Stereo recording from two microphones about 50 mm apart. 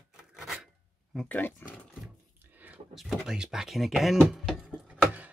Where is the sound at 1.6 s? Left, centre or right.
Left.